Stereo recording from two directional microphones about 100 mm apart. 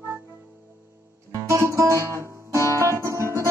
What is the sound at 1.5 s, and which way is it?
Guitar, 30° right (ahead or behind).